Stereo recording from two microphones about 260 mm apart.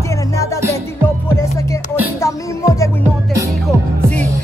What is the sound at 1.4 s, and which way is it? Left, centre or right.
Music, centre.